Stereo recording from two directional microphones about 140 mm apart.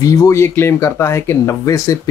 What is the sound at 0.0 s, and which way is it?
Speech, 25° left (ahead or behind).